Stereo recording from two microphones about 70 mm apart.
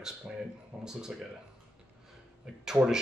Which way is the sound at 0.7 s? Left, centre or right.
Right.